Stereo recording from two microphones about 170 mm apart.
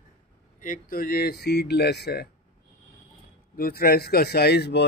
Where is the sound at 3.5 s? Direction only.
60° left (ahead or behind); by 4.8 s 80° left.